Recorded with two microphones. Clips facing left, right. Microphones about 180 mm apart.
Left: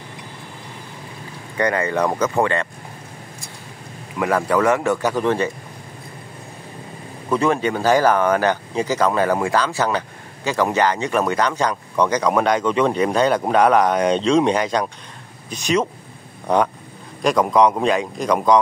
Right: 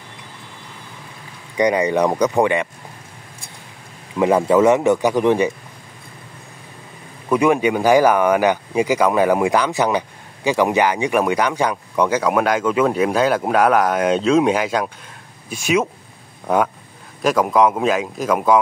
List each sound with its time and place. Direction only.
1.6 s speech: 15° right (ahead or behind)
4.2 s speech: 20° right (ahead or behind)
7.2 s a man's voice: 15° right (ahead or behind)